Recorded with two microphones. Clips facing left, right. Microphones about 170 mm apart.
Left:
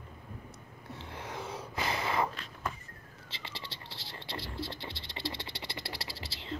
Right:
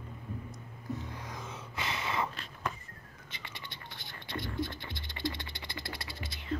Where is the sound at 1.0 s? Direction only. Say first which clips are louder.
Left 2 dB; 30° left (ahead or behind).